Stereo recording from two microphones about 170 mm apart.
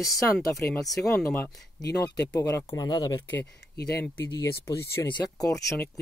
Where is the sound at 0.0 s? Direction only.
20° left (ahead or behind).